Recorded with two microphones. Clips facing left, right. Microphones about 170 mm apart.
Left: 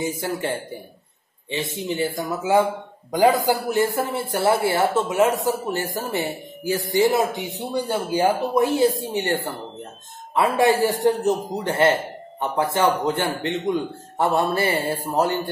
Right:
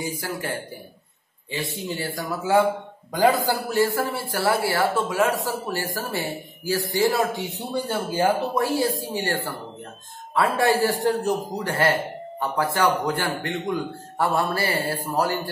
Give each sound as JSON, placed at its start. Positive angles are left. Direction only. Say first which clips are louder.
{"t": 0.0, "sound": "a man's voice", "louder": "left 4 dB", "side_deg": 25}